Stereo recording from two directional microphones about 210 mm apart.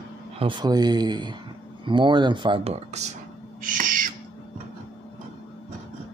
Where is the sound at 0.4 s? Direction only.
20° right (ahead or behind); by 4.1 s 40° right (ahead or behind).